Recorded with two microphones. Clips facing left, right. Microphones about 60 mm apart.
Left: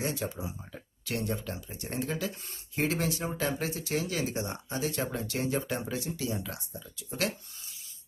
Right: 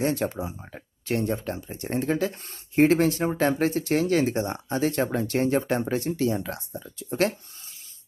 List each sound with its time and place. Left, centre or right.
0.0 s speech: right